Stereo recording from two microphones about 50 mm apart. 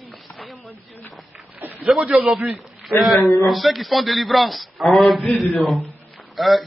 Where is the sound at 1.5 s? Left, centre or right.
Right.